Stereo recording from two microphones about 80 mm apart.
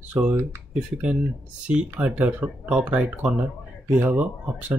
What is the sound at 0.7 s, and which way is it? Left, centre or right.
Speech, centre.